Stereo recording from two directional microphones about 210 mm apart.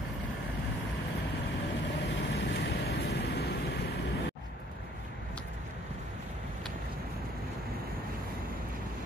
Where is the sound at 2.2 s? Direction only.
55° left (ahead or behind).